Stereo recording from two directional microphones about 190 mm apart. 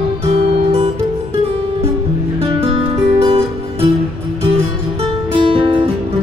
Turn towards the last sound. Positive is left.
turn(degrees=-25)  # may be behind; listen again after turning